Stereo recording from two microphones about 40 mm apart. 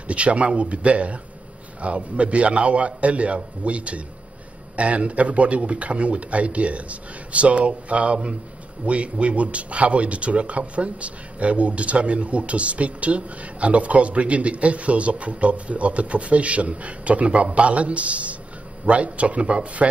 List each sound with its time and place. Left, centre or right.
0.1 s a man's voice: right